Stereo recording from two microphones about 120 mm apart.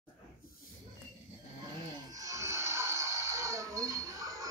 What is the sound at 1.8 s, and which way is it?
Music, 35° right (ahead or behind).